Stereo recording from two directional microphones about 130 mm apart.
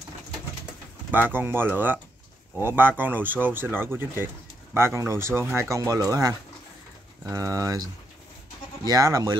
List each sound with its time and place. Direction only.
1.3 s speech: 15° right (ahead or behind)